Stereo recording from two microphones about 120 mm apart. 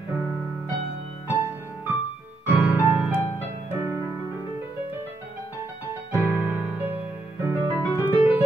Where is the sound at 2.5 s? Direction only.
15° right (ahead or behind).